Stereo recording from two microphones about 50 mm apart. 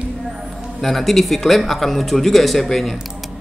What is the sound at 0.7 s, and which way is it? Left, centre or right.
Speech, centre.